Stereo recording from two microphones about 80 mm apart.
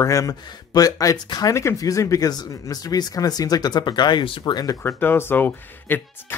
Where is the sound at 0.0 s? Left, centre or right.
Left.